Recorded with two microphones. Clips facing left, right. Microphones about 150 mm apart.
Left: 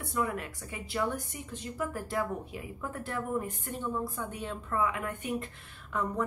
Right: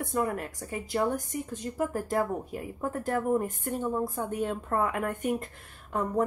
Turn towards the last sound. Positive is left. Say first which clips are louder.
# right 4 dB
turn(degrees=-45)  # may be behind; listen again after turning